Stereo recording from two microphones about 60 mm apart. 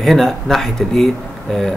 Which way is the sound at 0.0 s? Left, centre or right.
Centre.